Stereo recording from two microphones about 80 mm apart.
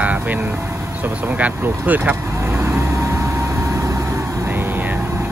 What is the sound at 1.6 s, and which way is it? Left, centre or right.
Vehicle, right.